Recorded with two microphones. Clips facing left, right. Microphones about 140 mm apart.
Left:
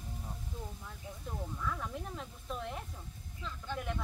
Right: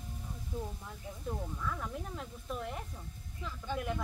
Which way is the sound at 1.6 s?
Centre (ahead or behind).